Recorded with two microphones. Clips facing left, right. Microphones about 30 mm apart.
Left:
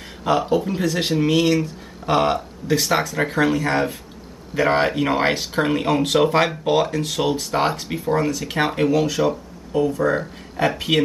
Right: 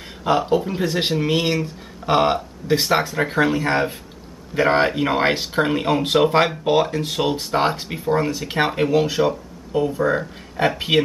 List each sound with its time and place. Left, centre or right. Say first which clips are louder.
0.2 s speech: right 1 dB; centre
0.8 s speech: left 1 dB; centre